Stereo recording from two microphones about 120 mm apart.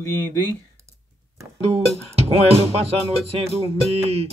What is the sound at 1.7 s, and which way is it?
Music, 55° right (ahead or behind).